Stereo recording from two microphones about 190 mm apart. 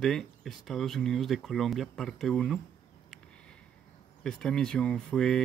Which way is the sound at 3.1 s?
5° left (ahead or behind).